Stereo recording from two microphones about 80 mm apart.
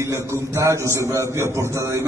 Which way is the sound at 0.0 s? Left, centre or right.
Right.